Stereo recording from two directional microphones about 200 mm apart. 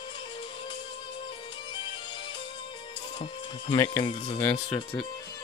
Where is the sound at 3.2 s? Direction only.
25° left (ahead or behind).